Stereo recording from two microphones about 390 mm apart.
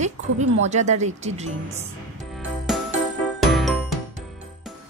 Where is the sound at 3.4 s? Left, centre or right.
Centre.